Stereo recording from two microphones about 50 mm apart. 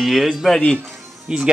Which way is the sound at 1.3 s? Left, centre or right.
Centre.